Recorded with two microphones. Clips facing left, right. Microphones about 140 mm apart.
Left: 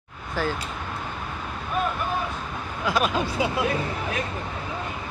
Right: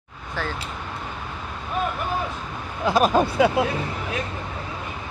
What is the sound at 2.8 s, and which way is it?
Speech, 35° right (ahead or behind).